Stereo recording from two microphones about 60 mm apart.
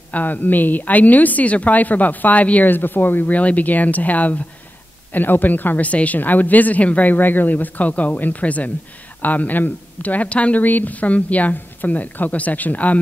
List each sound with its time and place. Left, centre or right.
0.1 s speech: left